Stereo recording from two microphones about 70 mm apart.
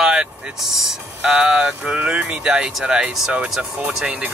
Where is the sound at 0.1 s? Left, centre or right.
Centre.